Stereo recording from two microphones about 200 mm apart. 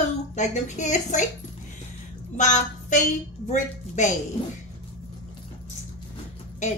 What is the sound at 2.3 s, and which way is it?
A woman's voice, 35° left (ahead or behind).